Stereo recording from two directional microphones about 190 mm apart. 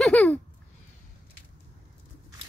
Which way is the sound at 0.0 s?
5° left (ahead or behind).